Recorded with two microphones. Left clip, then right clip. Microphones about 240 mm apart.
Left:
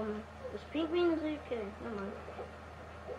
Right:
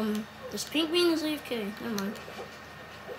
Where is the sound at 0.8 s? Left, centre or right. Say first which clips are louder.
Right 6 dB; right.